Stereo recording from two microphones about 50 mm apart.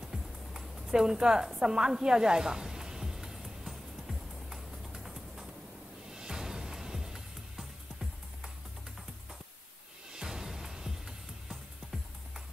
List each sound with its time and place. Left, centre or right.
0.1 s music: centre
0.9 s snake: centre
6.0 s music: centre
10.1 s music: centre